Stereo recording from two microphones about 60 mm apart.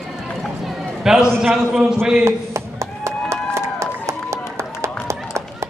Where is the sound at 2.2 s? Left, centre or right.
Right.